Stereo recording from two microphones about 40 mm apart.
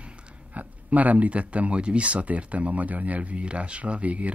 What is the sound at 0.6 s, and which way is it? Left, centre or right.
Speech, right.